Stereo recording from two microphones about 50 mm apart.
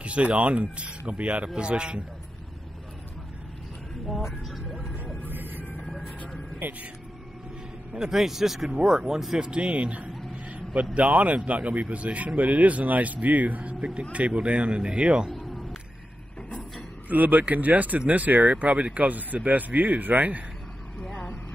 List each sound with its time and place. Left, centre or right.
0.0 s speech: right
4.5 s vehicle: centre
5.3 s emergency vehicle: right
6.6 s speech: right
7.9 s speech: centre
9.4 s speech: right
10.5 s a sound: right
11.0 s speech: right
15.3 s a sound: centre
17.1 s speech: right
21.0 s vehicle: centre